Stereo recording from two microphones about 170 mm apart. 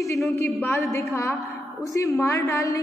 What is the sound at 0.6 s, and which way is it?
Speech, 10° left (ahead or behind).